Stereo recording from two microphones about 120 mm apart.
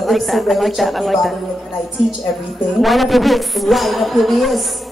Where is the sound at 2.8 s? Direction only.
Centre (ahead or behind).